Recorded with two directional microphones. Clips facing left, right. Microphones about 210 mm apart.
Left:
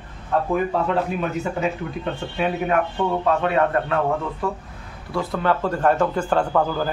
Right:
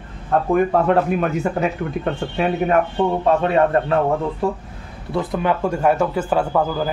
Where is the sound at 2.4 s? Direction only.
35° right (ahead or behind).